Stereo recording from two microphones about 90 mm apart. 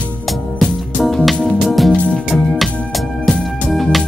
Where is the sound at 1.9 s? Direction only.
15° left (ahead or behind).